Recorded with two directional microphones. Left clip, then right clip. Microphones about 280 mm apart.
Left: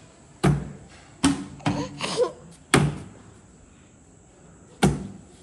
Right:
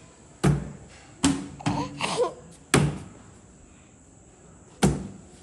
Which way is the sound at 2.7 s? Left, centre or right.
Centre.